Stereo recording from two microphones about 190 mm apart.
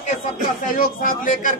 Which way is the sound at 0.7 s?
45° left (ahead or behind).